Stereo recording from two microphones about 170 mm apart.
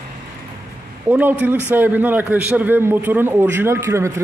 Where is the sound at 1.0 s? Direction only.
10° right (ahead or behind).